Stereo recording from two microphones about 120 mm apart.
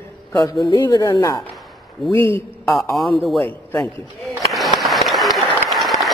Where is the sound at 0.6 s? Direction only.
35° left (ahead or behind).